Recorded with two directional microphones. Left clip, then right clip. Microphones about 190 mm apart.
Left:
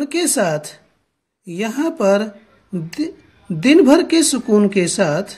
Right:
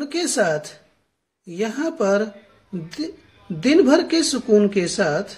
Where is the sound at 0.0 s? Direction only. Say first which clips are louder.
Left 3 dB; 30° left (ahead or behind).